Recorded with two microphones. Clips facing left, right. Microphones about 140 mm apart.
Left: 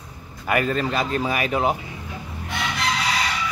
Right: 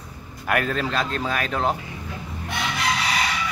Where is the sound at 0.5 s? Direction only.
Centre (ahead or behind).